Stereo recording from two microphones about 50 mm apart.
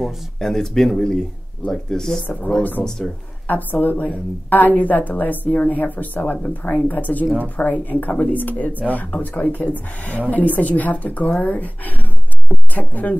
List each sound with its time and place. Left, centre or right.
0.0 s speech: centre
3.4 s a woman's voice: left